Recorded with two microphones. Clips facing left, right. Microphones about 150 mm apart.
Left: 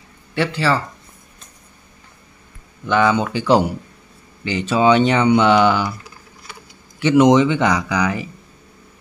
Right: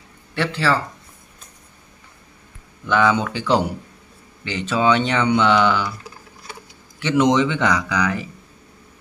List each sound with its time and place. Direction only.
0.3 s speech: 5° left (ahead or behind)
2.9 s speech: centre (ahead or behind)
7.0 s speech: 10° left (ahead or behind)